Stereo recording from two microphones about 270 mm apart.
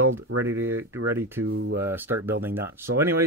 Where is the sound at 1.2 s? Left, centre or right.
Centre.